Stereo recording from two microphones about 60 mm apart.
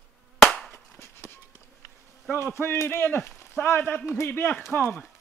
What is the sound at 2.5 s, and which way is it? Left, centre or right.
Speech, left.